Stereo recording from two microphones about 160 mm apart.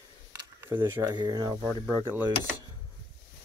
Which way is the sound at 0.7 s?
25° right (ahead or behind).